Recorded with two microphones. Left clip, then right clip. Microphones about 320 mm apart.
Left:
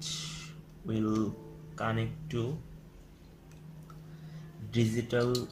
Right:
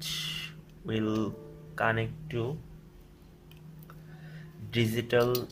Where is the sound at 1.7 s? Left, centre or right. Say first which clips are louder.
Right 6 dB; right.